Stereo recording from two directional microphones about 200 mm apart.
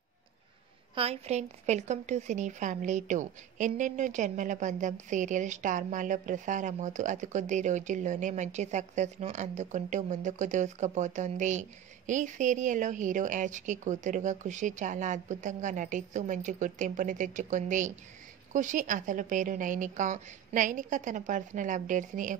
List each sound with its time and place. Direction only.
0.9 s a woman's voice: 30° right (ahead or behind)